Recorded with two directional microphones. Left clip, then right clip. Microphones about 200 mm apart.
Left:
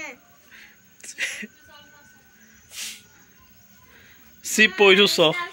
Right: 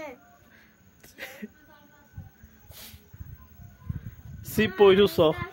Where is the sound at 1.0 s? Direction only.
Centre (ahead or behind).